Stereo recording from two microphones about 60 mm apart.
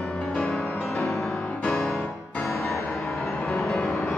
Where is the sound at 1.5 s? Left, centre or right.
Left.